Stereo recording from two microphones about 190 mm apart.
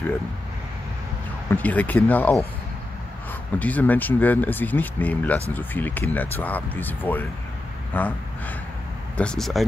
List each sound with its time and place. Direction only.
1.5 s speech: 10° left (ahead or behind)
3.5 s speech: 10° left (ahead or behind)